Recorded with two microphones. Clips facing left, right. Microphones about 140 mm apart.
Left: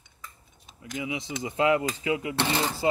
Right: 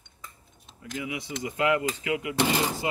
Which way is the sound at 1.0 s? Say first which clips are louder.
Left 1 dB; 25° left (ahead or behind).